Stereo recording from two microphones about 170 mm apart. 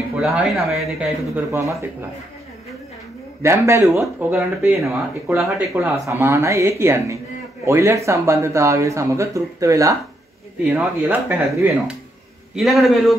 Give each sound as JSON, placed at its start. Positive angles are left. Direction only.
{"t": 0.2, "sound": "speech", "side_deg": -5}
{"t": 3.4, "sound": "speech", "side_deg": -15}
{"t": 4.4, "sound": "a man's voice", "side_deg": 0}
{"t": 4.8, "sound": "a man's voice", "side_deg": -15}